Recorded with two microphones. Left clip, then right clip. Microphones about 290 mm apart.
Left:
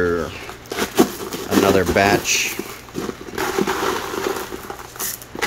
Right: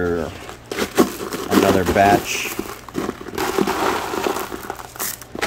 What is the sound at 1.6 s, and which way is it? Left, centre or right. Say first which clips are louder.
Speech: even; centre.